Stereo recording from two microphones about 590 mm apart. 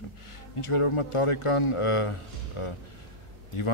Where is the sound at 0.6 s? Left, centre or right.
Left.